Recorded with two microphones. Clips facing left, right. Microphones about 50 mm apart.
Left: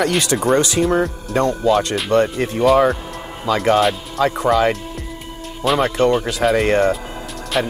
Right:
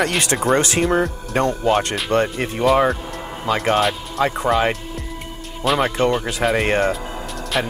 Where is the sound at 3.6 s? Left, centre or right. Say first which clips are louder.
Left 4 dB; centre.